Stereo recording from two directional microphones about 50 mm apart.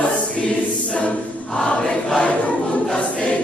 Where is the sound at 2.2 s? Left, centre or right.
Left.